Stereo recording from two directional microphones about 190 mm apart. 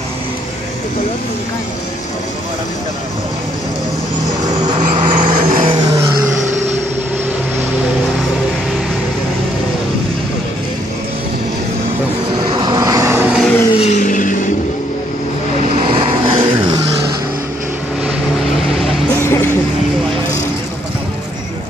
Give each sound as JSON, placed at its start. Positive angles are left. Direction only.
{"t": 4.7, "sound": "vehicle", "side_deg": -30}
{"t": 12.4, "sound": "vehicle", "side_deg": -25}
{"t": 13.4, "sound": "vehicle", "side_deg": 5}
{"t": 13.7, "sound": "vehicle", "side_deg": 40}
{"t": 15.9, "sound": "vehicle", "side_deg": -25}